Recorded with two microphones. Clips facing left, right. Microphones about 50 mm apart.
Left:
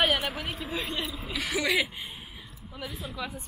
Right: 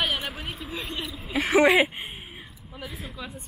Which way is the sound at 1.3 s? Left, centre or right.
Right.